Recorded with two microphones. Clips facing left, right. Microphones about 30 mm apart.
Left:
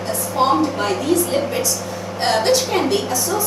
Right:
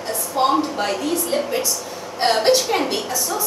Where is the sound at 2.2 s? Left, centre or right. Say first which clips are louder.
Even; centre.